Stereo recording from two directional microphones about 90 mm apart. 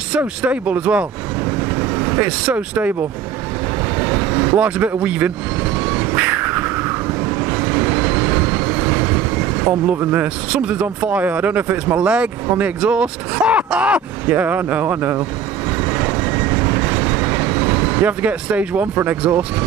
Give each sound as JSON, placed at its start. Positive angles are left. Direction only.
{"t": 0.4, "sound": "speech", "side_deg": -15}
{"t": 1.6, "sound": "vehicle", "side_deg": -20}
{"t": 3.9, "sound": "vehicle", "side_deg": -20}
{"t": 10.5, "sound": "speech", "side_deg": -15}
{"t": 15.8, "sound": "vehicle", "side_deg": -20}